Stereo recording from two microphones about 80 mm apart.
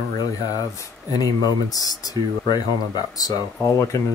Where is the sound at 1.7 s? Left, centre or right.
Left.